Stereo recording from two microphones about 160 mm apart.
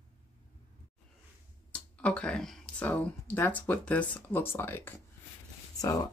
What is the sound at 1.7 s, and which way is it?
Speech, 10° left (ahead or behind).